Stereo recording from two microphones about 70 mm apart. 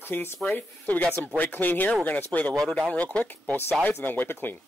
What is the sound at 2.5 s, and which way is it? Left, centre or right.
Speech, centre.